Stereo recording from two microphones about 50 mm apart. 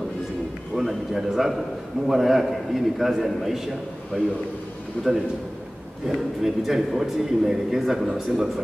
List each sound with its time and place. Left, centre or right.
0.7 s a man's voice: centre
5.0 s a man's voice: left
6.0 s a man's voice: centre